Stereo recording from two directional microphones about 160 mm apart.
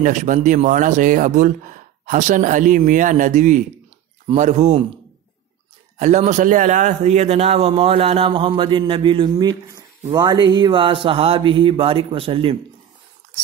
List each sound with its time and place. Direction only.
0.0 s speech: 50° right (ahead or behind)
5.9 s a man's voice: 45° right (ahead or behind)